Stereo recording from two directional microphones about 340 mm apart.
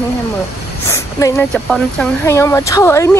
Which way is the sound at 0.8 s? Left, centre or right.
Centre.